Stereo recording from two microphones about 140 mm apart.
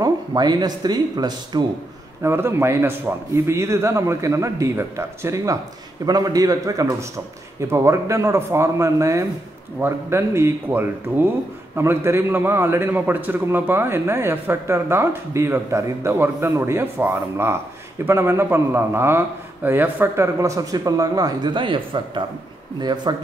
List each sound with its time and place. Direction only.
0.0 s a man's voice: 30° right (ahead or behind)
2.2 s a man's voice: 15° right (ahead or behind)